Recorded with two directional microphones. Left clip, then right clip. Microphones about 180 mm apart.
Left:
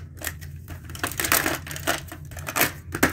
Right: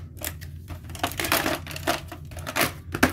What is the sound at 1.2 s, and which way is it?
Crushing, 10° right (ahead or behind).